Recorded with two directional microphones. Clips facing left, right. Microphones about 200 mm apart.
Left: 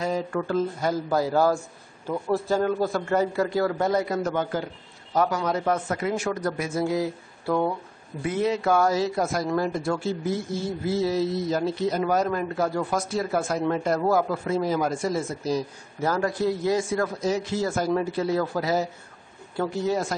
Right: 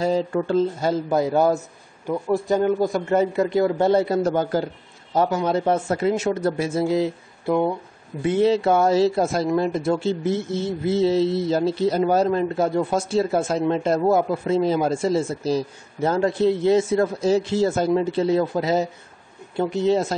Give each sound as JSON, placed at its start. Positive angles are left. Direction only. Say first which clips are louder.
{"t": 0.0, "sound": "speech", "louder": "right 5 dB", "side_deg": -25}
{"t": 6.9, "sound": "a sound", "louder": "right 4 dB", "side_deg": -20}
{"t": 8.2, "sound": "speech", "louder": "right 6 dB", "side_deg": -30}